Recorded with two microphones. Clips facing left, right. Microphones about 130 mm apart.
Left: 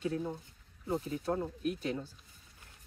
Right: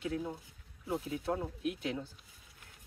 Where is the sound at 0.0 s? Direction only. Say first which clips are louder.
Left 2 dB; centre (ahead or behind).